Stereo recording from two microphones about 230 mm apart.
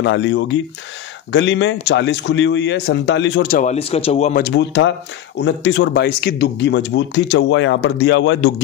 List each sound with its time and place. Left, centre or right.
0.0 s speech: left
3.5 s speech: left
4.4 s speech: left